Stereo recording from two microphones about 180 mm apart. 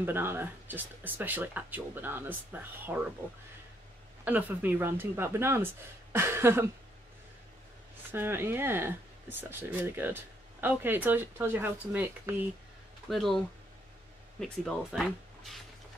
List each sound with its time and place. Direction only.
0.0 s speech: 10° right (ahead or behind)
4.2 s speech: 10° right (ahead or behind)
8.1 s speech: 10° right (ahead or behind)
13.1 s speech: centre (ahead or behind)
14.4 s speech: centre (ahead or behind)